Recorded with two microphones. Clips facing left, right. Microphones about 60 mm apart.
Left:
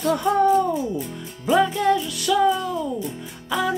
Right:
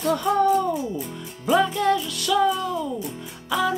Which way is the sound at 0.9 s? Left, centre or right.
Centre.